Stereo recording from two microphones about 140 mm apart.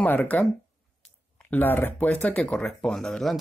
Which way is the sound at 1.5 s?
15° left (ahead or behind).